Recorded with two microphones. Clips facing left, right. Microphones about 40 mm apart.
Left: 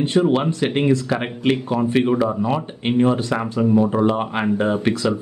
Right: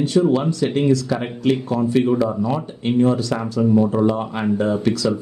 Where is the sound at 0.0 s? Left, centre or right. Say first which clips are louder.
Even; left.